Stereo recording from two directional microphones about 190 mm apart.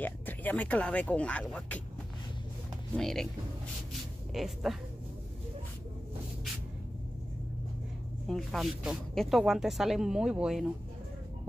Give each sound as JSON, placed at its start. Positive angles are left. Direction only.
{"t": 0.0, "sound": "speech", "side_deg": 10}
{"t": 3.0, "sound": "speech", "side_deg": 0}
{"t": 4.3, "sound": "speech", "side_deg": 0}
{"t": 8.3, "sound": "speech", "side_deg": 0}